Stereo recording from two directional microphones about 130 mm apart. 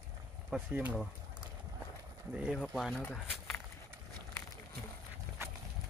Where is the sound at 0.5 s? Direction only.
10° right (ahead or behind).